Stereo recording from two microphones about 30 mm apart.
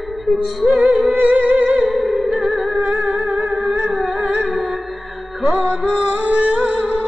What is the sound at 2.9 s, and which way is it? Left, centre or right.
Music, right.